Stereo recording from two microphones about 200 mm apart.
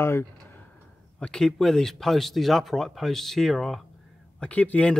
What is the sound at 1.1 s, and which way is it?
Speech, 5° left (ahead or behind).